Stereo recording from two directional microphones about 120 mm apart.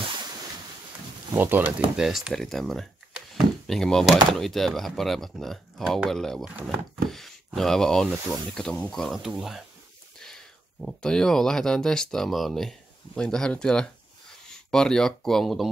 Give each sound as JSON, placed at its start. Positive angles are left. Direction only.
{"t": 1.3, "sound": "speech", "side_deg": -15}
{"t": 2.0, "sound": "speech", "side_deg": -5}